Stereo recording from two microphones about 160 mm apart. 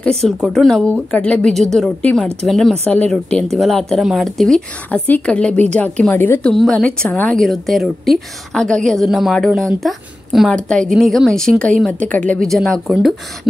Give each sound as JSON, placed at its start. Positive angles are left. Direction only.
{"t": 0.0, "sound": "a woman's voice", "side_deg": 5}
{"t": 6.5, "sound": "a woman's voice", "side_deg": 0}